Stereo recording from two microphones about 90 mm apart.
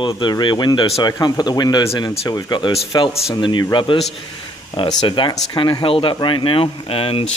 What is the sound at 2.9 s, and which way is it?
Speech, 70° left (ahead or behind).